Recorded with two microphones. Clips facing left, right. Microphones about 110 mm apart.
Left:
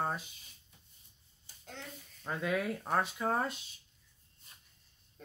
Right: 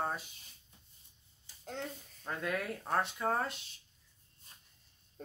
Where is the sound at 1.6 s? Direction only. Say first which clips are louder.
Right 7 dB; 40° right (ahead or behind).